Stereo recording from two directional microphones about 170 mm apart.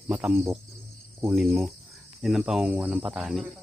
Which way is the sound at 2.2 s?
Centre (ahead or behind).